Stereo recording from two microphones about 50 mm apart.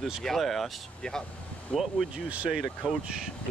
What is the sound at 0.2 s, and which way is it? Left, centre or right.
Speech, centre.